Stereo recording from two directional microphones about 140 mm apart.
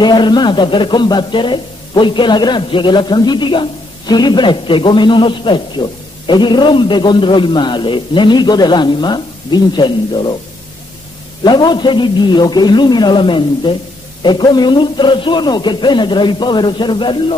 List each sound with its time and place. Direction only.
0.0 s speech: 30° left (ahead or behind)
11.4 s speech: 30° left (ahead or behind)